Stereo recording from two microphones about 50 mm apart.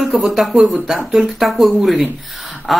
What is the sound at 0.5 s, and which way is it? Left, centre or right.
Speech, centre.